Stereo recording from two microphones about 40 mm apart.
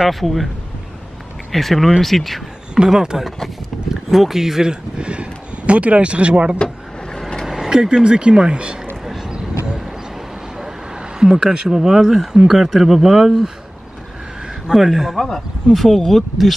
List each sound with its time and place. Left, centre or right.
0.1 s speech: centre
1.5 s speech: centre
2.9 s speech: centre; by 6.6 s right
7.4 s speech: centre
9.0 s vehicle: centre
9.3 s vehicle: centre
10.6 s a sound: centre
12.3 s speech: centre
13.1 s speech: centre
14.7 s speech: centre
15.7 s speech: centre